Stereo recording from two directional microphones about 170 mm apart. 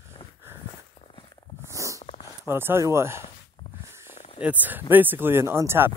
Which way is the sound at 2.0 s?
35° left (ahead or behind).